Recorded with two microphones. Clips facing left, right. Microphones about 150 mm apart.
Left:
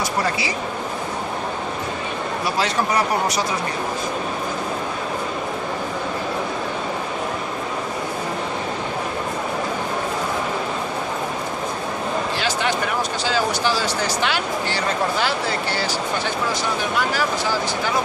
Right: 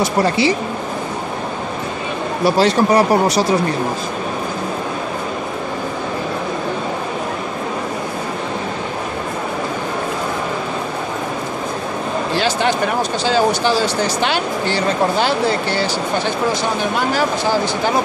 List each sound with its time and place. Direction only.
0.0 s speech: 30° right (ahead or behind)
2.4 s speech: 35° right (ahead or behind)
12.4 s speech: 30° right (ahead or behind)
17.1 s speech: 25° right (ahead or behind)